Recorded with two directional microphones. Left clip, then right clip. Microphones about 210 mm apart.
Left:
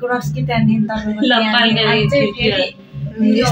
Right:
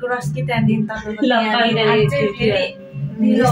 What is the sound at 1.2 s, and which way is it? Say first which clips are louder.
Speech: left 2 dB; 25° right (ahead or behind).